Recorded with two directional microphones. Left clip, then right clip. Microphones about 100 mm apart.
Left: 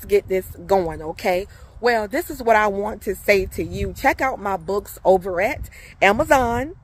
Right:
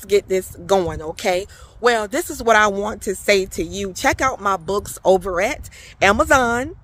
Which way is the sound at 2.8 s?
40° right (ahead or behind).